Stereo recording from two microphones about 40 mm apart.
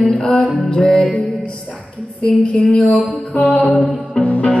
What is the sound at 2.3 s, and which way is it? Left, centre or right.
Music, left.